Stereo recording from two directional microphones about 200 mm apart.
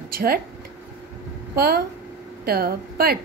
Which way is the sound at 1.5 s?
50° right (ahead or behind).